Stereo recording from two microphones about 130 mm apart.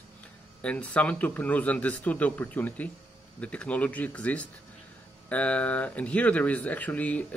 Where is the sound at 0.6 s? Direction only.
10° left (ahead or behind).